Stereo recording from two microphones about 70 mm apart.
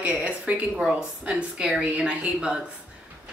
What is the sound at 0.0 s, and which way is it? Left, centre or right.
A woman's voice, right.